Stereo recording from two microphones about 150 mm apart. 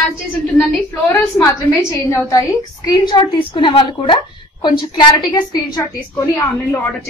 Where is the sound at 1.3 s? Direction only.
20° left (ahead or behind).